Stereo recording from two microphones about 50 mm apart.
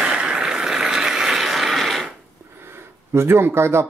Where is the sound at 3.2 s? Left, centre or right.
Right.